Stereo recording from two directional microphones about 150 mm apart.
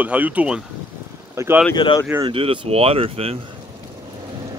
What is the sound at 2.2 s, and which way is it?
Speech, 35° right (ahead or behind).